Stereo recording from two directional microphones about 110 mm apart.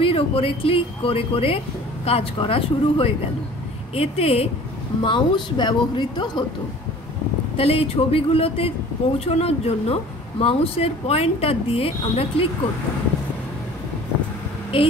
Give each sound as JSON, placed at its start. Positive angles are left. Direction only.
{"t": 0.0, "sound": "speech", "side_deg": 55}
{"t": 5.0, "sound": "speech", "side_deg": 45}
{"t": 7.5, "sound": "speech", "side_deg": 60}
{"t": 14.7, "sound": "speech", "side_deg": 55}